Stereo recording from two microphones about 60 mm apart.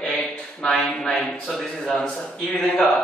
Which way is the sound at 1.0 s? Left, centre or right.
Centre.